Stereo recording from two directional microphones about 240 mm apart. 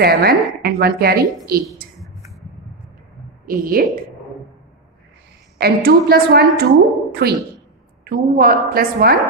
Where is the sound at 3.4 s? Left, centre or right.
Right.